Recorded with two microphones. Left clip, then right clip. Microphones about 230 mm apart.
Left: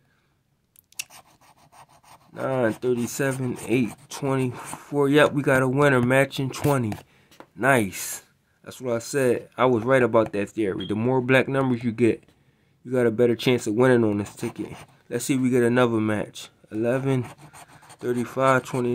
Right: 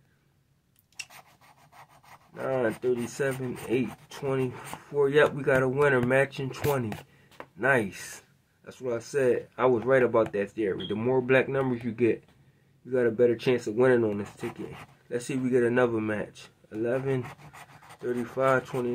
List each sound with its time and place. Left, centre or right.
2.3 s speech: left
14.4 s speech: centre
15.0 s speech: left
17.2 s a sound: centre
18.2 s speech: left